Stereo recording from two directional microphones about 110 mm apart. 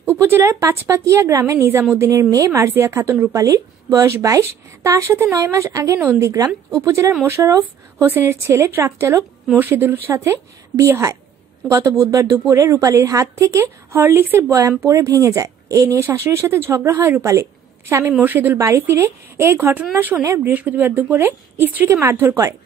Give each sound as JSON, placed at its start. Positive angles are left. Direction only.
{"t": 0.0, "sound": "a woman's voice", "side_deg": -20}